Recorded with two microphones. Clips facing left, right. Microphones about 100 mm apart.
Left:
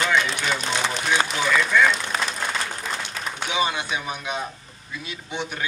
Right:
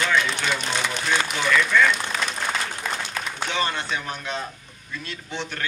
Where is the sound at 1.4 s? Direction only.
15° left (ahead or behind).